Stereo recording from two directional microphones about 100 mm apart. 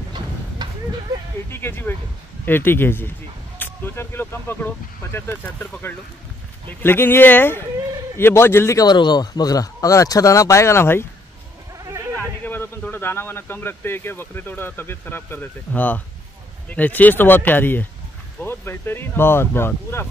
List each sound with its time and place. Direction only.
1.5 s speech: 25° left (ahead or behind)
3.5 s vehicle: 20° left (ahead or behind)
5.0 s speech: 25° left (ahead or behind)
8.8 s speech: 45° left (ahead or behind); by 11.1 s 25° left (ahead or behind)
12.2 s a man's voice: 20° left (ahead or behind)